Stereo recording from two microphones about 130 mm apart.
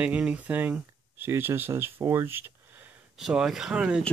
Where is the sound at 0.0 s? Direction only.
10° right (ahead or behind).